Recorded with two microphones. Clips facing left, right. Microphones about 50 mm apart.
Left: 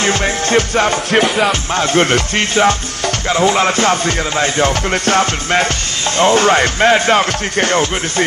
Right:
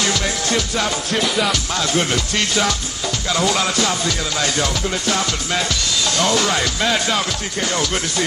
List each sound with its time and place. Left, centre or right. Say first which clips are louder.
0.0 s music: left 5 dB; left
1.1 s music: left 7 dB; left
1.4 s music: left 5 dB; left